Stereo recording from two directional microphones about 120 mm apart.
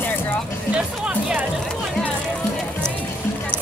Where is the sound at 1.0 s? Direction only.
10° right (ahead or behind).